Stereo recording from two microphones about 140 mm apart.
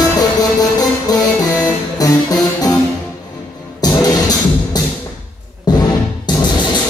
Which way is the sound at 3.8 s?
25° left (ahead or behind).